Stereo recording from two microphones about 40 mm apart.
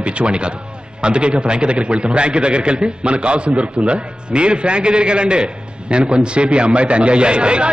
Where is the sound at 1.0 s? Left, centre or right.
Right.